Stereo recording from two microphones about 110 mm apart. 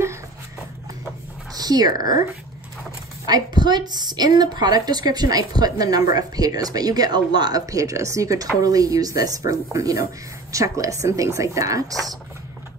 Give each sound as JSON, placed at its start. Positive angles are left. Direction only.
{"t": 1.5, "sound": "speech", "side_deg": -35}
{"t": 3.3, "sound": "speech", "side_deg": -40}